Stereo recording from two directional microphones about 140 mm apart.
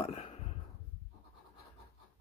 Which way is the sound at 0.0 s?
45° left (ahead or behind).